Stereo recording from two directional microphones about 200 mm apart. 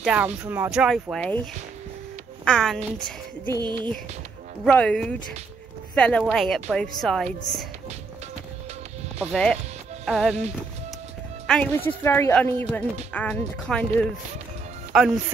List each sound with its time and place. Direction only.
0.0 s a woman's voice: 5° right (ahead or behind)
2.4 s a woman's voice: 5° left (ahead or behind)
3.5 s music: 20° right (ahead or behind)
4.6 s a woman's voice: 5° left (ahead or behind)
9.3 s a woman's voice: 5° left (ahead or behind)
11.4 s speech: 5° left (ahead or behind)